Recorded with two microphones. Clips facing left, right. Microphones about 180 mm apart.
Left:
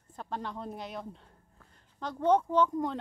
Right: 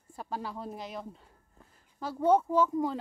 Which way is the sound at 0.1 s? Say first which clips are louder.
Even; 10° right (ahead or behind).